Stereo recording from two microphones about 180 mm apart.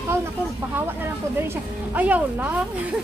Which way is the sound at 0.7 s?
10° right (ahead or behind).